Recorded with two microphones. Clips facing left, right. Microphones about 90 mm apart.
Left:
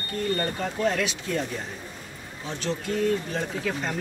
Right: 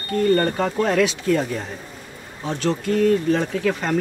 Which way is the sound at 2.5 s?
60° right (ahead or behind).